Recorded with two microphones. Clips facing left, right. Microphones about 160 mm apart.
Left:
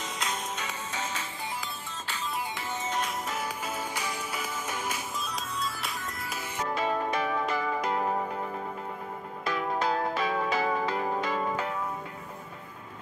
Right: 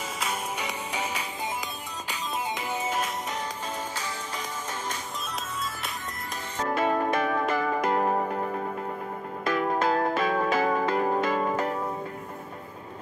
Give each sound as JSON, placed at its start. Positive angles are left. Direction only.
{"t": 0.2, "sound": "music", "side_deg": -10}
{"t": 3.9, "sound": "music", "side_deg": 10}
{"t": 6.7, "sound": "music", "side_deg": -55}